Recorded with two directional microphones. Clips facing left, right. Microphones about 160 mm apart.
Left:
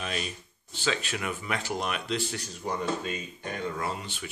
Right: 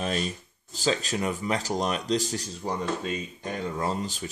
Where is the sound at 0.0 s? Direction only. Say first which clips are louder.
Right 5 dB; 35° right (ahead or behind).